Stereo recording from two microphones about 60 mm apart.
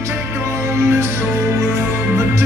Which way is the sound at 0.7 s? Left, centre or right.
Right.